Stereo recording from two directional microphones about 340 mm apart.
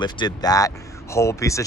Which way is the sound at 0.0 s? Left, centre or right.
Centre.